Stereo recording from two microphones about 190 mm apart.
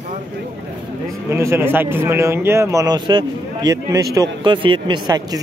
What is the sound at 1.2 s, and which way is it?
Speech, 15° right (ahead or behind).